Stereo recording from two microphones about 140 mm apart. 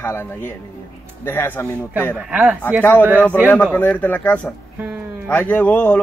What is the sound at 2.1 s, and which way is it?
Speech, 10° right (ahead or behind).